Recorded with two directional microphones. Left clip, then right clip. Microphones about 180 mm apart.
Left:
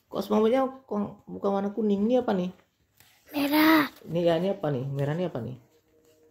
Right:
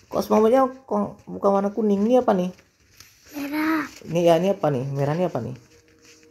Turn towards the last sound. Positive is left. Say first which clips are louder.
# right 7 dB
turn(degrees=-5)  # may be behind; listen again after turning